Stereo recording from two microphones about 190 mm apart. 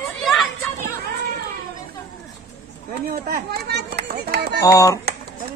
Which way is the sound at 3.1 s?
55° right (ahead or behind).